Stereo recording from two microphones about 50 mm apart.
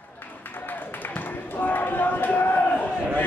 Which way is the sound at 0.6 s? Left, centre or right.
Left.